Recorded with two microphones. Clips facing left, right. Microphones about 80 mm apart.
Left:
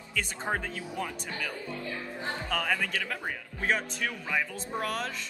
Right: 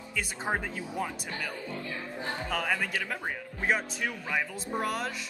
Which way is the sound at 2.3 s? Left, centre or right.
Centre.